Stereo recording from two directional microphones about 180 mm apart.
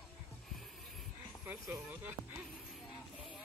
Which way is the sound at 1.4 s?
5° right (ahead or behind).